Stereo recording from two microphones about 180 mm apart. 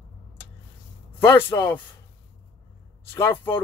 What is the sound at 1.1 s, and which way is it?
Speech, 10° left (ahead or behind).